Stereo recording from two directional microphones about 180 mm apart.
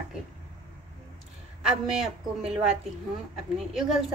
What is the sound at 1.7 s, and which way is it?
Speech, 5° right (ahead or behind).